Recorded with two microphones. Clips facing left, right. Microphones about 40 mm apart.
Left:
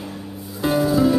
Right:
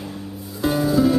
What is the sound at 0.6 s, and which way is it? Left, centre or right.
Music, centre.